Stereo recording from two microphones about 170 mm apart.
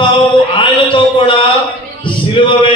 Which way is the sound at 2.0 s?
30° left (ahead or behind).